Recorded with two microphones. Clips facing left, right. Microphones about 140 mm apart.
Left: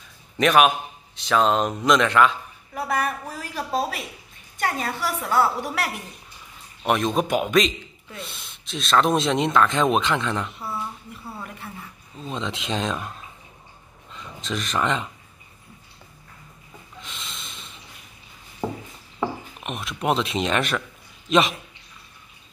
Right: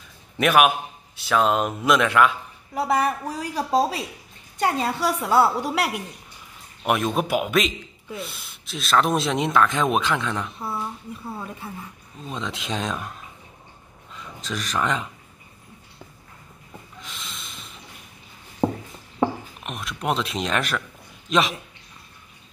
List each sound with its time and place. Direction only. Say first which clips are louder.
0.4 s a man's voice: even; 5° right (ahead or behind)
2.7 s a woman's voice: right 3 dB; 25° right (ahead or behind)
6.8 s a man's voice: left 1 dB; 5° right (ahead or behind)
11.2 s a man's voice: right 2 dB; 15° right (ahead or behind)
12.3 s a man's voice: left 1 dB; centre (ahead or behind)
14.1 s speech: left 2 dB; centre (ahead or behind)
17.0 s snort: left 1 dB; centre (ahead or behind)
18.6 s a sound: right 6 dB; 25° right (ahead or behind)
19.6 s a man's voice: left 2 dB; centre (ahead or behind)